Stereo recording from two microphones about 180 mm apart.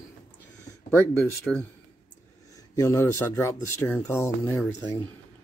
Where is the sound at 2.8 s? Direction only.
15° left (ahead or behind).